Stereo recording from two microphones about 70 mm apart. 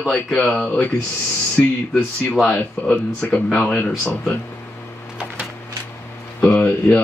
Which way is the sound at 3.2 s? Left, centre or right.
Centre.